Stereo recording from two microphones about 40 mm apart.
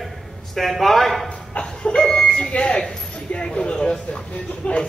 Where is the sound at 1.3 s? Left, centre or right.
Left.